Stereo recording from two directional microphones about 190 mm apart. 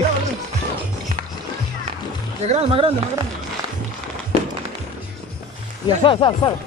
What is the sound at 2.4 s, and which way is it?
Speech, 35° right (ahead or behind).